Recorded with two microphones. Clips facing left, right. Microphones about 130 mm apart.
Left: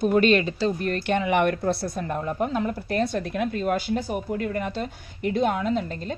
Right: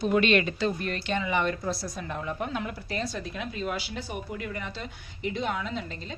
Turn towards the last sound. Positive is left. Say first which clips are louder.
# left 9 dB
turn(degrees=45)  # may be behind; listen again after turning